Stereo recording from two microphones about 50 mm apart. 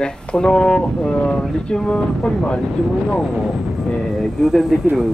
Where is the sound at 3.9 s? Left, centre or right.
Centre.